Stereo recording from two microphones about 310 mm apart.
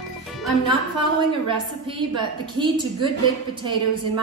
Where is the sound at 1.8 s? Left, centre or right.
Centre.